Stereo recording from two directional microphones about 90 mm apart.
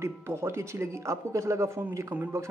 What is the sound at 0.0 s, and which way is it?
Speech, 30° right (ahead or behind).